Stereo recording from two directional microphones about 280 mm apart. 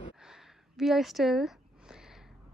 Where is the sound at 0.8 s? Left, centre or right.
Centre.